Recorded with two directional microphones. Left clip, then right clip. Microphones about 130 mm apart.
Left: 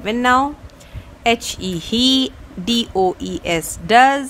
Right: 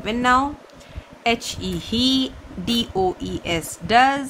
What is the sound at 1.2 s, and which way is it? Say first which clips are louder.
Speech: left 4 dB; 60° left (ahead or behind).